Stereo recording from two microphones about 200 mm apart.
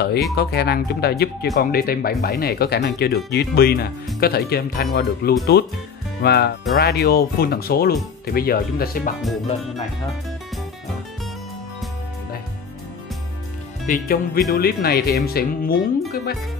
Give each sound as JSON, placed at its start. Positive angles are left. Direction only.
{"t": 0.4, "sound": "speech", "side_deg": 55}
{"t": 9.2, "sound": "music", "side_deg": 0}
{"t": 13.8, "sound": "speech", "side_deg": 45}